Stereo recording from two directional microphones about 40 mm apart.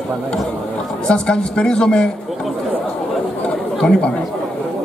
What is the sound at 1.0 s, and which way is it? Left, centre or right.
Speech, left.